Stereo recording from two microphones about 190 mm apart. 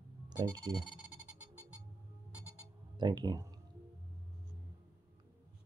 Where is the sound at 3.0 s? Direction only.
20° right (ahead or behind).